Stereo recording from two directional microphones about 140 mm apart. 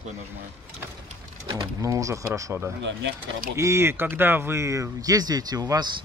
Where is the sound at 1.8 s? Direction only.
25° right (ahead or behind).